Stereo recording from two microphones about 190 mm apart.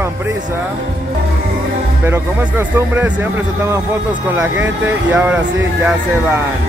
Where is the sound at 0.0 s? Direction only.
10° right (ahead or behind).